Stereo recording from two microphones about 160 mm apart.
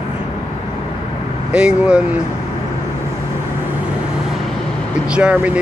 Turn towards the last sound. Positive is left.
turn(degrees=-10)  # may be behind; listen again after turning